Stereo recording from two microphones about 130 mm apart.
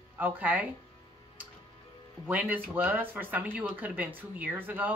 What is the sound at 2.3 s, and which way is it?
Speech, 10° right (ahead or behind).